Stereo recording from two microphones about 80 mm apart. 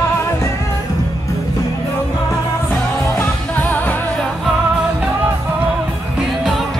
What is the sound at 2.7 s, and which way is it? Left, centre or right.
Music, left.